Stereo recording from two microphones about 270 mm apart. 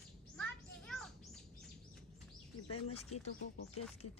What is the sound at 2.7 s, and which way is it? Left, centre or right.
Speech, left.